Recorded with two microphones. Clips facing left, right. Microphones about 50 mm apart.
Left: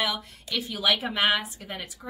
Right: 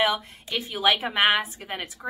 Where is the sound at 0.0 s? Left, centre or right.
Right.